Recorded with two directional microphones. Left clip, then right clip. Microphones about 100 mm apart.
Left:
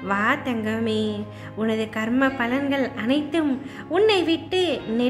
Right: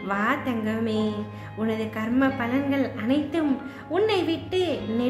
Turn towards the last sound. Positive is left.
turn(degrees=45)  # may be behind; listen again after turning